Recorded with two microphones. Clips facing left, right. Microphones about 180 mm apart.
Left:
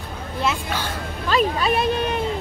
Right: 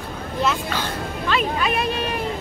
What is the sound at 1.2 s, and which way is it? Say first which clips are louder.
Speech: left 3 dB; 35° left (ahead or behind).